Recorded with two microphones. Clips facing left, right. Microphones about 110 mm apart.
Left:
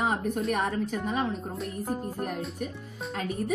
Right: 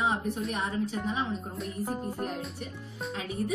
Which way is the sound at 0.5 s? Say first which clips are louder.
Left 3 dB; 65° left (ahead or behind).